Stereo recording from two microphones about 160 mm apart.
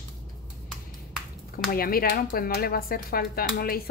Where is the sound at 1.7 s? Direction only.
70° left (ahead or behind).